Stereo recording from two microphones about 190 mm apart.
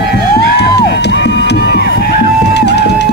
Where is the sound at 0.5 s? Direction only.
65° left (ahead or behind).